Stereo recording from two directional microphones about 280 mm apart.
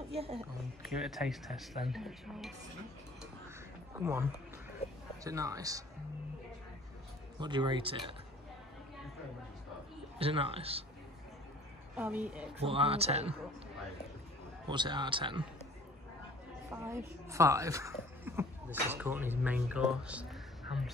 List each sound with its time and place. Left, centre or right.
0.1 s a man's voice: right
0.8 s speech: centre
4.0 s speech: centre
4.8 s speech: left
5.2 s speech: centre
7.3 s speech: centre
10.1 s a man's voice: centre
12.0 s speech: centre
12.5 s a man's voice: centre
14.7 s speech: centre
16.7 s speech: centre